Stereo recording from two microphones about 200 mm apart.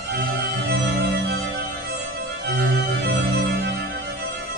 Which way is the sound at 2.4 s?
55° right (ahead or behind).